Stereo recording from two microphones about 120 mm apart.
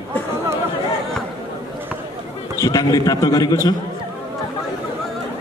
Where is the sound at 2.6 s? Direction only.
30° left (ahead or behind).